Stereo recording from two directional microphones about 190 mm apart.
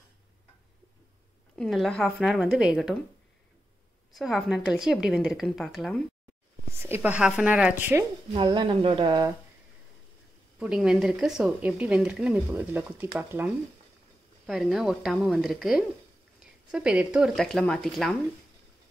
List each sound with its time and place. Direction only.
1.6 s a woman's voice: 5° left (ahead or behind)
4.1 s a woman's voice: centre (ahead or behind)
6.8 s speech: 10° right (ahead or behind)
8.4 s speech: 25° right (ahead or behind)
10.6 s a woman's voice: 5° right (ahead or behind)